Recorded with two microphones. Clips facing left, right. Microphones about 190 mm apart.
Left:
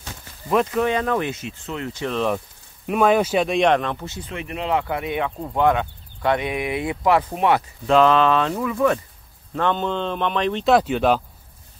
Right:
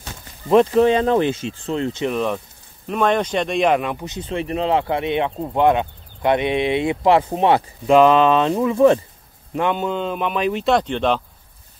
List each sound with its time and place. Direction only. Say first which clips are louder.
0.5 s speech: right 6 dB; 30° right (ahead or behind)
2.1 s speech: even; centre (ahead or behind); by 4.3 s 15° right (ahead or behind)
4.3 s speech: right 4 dB; 30° right (ahead or behind)
7.8 s speech: right 3 dB; 15° right (ahead or behind)
9.5 s speech: right 1 dB; 10° right (ahead or behind); by 11.2 s 5° left (ahead or behind)